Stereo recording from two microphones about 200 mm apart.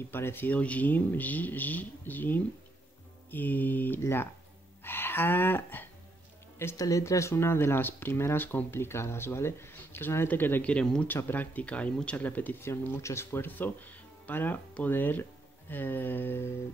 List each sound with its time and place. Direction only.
0.1 s speech: 10° left (ahead or behind)